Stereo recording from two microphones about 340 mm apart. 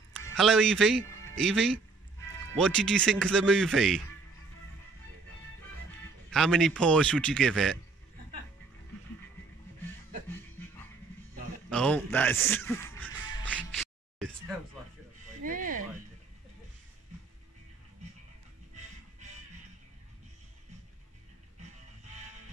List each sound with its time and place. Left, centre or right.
0.1 s speech: centre
6.3 s speech: centre
11.7 s music: centre
15.4 s a sound: right